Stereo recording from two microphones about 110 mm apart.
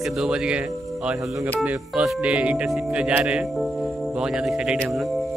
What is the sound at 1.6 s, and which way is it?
Speech, 5° right (ahead or behind).